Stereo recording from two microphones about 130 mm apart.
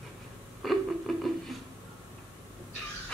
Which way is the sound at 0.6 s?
Centre (ahead or behind).